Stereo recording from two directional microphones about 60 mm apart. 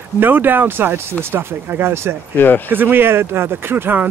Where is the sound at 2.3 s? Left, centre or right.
Left.